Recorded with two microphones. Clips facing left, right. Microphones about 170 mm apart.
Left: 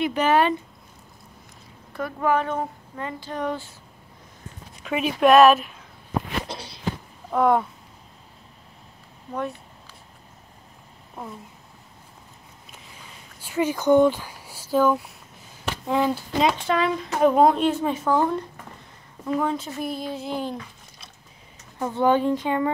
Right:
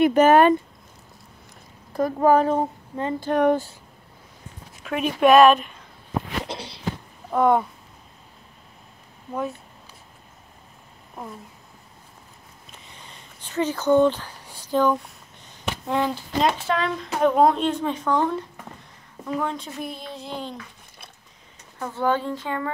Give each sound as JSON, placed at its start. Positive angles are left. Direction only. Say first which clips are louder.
{"t": 0.0, "sound": "speech", "louder": "right 6 dB", "side_deg": -45}
{"t": 2.0, "sound": "speech", "louder": "right 5 dB", "side_deg": -40}
{"t": 3.2, "sound": "speech", "louder": "right 10 dB", "side_deg": -60}
{"t": 4.8, "sound": "speech", "louder": "even", "side_deg": 0}
{"t": 6.4, "sound": "walk", "louder": "right 2 dB", "side_deg": -25}
{"t": 7.2, "sound": "speech", "louder": "right 1 dB", "side_deg": 0}
{"t": 12.9, "sound": "a sound", "louder": "even", "side_deg": 5}
{"t": 15.9, "sound": "speech", "louder": "left 2 dB", "side_deg": 5}
{"t": 21.7, "sound": "speech", "louder": "left 4 dB", "side_deg": 20}